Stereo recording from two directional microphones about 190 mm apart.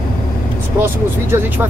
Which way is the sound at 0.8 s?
10° right (ahead or behind).